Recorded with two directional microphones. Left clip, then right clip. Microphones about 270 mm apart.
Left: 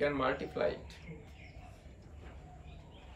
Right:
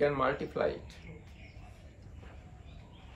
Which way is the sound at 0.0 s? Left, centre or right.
Centre.